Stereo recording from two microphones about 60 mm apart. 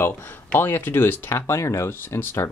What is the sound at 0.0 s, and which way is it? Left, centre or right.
Speech, left.